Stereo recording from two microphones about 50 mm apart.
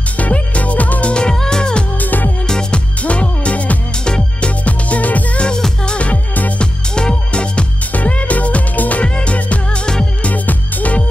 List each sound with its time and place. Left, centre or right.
0.2 s music: left
1.1 s music: centre
2.0 s music: left
2.4 s music: centre
3.0 s music: left
4.6 s music: left
5.4 s music: centre
6.6 s music: centre
7.9 s music: left